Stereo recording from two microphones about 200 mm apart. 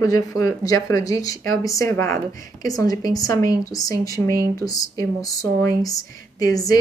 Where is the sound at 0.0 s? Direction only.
15° left (ahead or behind).